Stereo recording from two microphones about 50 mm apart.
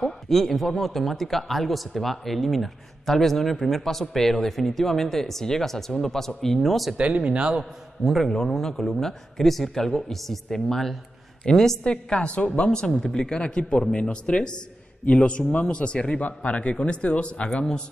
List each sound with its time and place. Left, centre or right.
0.0 s speech: centre
7.0 s speech: right
8.0 s speech: centre
8.3 s speech: centre
11.8 s a woman's voice: left